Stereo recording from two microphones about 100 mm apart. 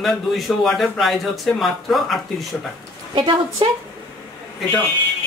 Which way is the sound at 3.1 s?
55° right (ahead or behind).